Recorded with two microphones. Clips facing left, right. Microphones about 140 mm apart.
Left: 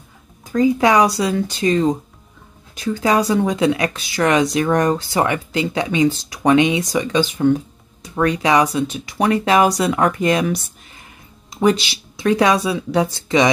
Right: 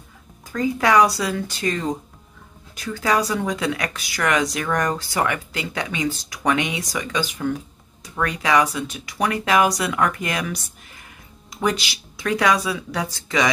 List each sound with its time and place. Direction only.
0.5 s speech: 20° left (ahead or behind)